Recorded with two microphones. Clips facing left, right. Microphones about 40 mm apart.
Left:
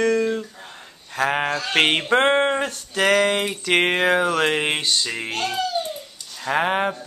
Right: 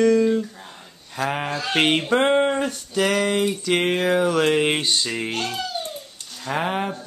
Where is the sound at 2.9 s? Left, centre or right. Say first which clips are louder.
Left 3 dB; left.